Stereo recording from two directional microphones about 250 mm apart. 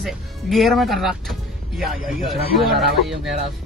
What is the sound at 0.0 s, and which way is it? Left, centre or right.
Speech, centre.